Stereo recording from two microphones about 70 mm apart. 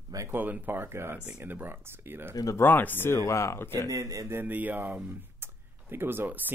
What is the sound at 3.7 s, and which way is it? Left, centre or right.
Speech, right.